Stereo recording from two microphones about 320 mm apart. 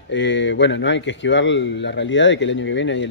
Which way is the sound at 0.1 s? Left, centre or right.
Left.